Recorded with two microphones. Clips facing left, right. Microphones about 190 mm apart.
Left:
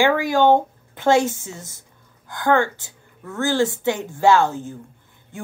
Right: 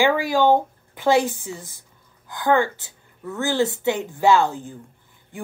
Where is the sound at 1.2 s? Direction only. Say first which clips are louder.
Left 2 dB; 15° right (ahead or behind).